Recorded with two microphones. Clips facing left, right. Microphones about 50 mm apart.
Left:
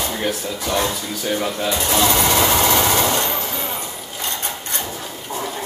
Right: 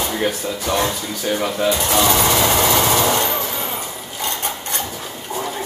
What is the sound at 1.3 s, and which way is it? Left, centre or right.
Speech, centre.